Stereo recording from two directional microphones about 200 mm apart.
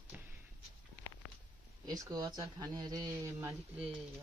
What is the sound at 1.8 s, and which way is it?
Speech, 15° right (ahead or behind).